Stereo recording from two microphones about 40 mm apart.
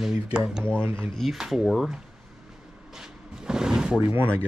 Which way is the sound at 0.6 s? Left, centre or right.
Right.